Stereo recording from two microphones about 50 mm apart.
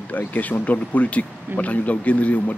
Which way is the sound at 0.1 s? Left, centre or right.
Left.